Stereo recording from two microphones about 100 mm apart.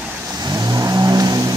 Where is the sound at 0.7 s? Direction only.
40° right (ahead or behind).